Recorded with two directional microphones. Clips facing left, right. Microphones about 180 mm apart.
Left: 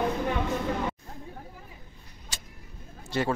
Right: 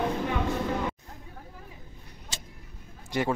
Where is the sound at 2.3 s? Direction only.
25° right (ahead or behind).